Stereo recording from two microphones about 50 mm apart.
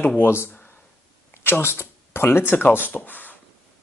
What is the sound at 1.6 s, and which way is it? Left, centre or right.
Speech, left.